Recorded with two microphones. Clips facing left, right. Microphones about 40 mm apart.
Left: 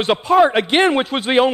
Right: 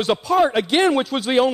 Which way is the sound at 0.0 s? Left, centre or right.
Left.